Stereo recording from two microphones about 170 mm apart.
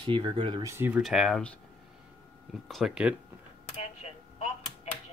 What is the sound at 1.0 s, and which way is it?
Speech, centre (ahead or behind).